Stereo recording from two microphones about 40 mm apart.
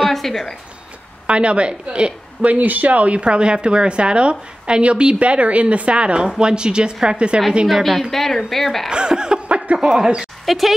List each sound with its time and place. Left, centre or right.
0.1 s a sound: centre
1.2 s speech: right
2.4 s speech: right
7.6 s a woman's voice: centre
8.9 s speech: right
10.4 s speech: centre